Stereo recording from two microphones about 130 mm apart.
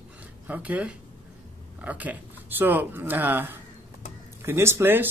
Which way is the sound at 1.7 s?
10° right (ahead or behind).